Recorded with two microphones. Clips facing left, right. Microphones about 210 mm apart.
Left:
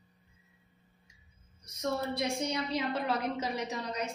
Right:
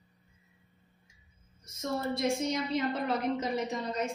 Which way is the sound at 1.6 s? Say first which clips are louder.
Even; 70° left (ahead or behind).